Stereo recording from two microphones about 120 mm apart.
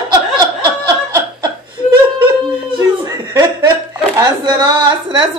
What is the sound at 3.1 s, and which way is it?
Chuckle, 30° right (ahead or behind).